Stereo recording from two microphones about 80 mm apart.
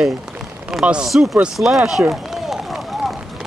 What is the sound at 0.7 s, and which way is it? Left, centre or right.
Speech, centre.